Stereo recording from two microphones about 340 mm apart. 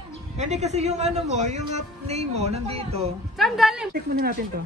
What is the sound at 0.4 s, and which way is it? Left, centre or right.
Speech, centre.